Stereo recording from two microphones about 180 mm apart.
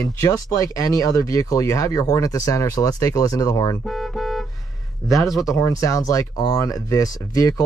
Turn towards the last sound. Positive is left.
turn(degrees=20)  # may be behind; listen again after turning